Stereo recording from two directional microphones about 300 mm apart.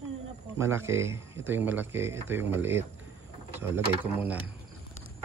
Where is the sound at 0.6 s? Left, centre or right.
Centre.